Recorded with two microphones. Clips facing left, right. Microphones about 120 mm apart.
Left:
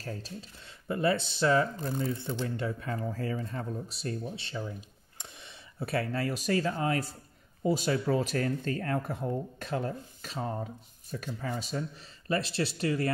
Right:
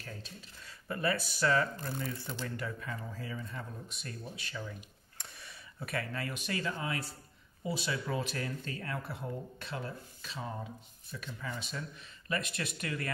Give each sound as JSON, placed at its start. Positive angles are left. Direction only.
{"t": 0.0, "sound": "speech", "side_deg": 35}
{"t": 0.8, "sound": "speech", "side_deg": 25}
{"t": 2.9, "sound": "speech", "side_deg": 45}